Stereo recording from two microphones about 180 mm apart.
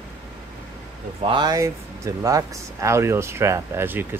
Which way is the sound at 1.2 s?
25° right (ahead or behind).